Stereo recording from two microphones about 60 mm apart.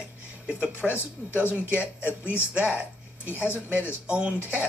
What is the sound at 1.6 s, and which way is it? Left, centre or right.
Speech, right.